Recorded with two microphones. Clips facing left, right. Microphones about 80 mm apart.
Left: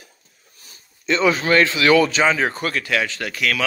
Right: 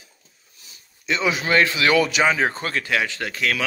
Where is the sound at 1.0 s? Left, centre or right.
Centre.